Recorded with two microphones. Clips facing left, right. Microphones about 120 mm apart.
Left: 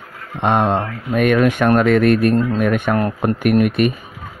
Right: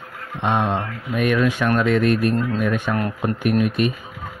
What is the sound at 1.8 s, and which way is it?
A man's voice, 70° left (ahead or behind).